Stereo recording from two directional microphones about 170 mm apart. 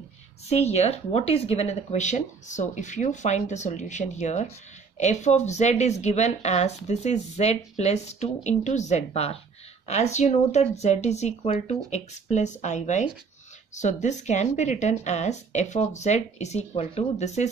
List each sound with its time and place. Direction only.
0.5 s speech: 40° left (ahead or behind)